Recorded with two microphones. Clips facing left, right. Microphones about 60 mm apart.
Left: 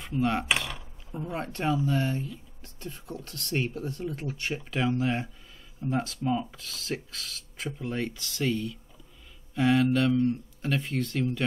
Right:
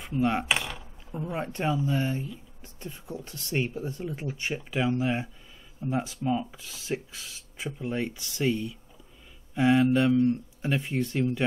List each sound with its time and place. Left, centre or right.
0.1 s a sound: centre
1.4 s speech: centre
4.6 s speech: centre